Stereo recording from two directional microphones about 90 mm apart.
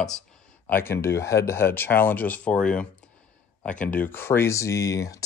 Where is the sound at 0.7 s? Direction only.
25° left (ahead or behind).